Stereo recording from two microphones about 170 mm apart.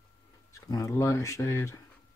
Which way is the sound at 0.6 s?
20° left (ahead or behind).